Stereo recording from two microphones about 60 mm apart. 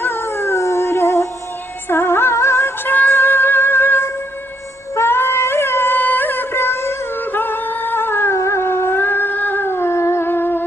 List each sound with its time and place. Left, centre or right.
0.0 s howl: left
1.9 s music: left
2.9 s music: left
7.2 s music: left
8.4 s a sound: left